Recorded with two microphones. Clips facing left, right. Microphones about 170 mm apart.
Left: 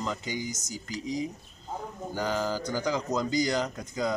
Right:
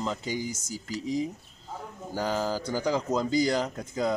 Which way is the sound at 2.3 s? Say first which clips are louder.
Right 1 dB; 35° right (ahead or behind).